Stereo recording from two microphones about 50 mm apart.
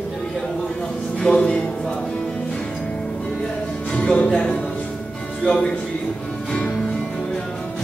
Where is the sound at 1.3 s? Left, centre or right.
Left.